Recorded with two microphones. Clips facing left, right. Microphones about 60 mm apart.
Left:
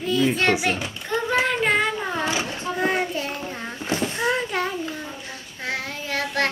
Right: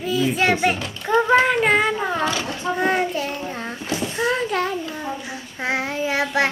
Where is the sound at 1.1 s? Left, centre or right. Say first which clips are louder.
Right 6 dB; centre.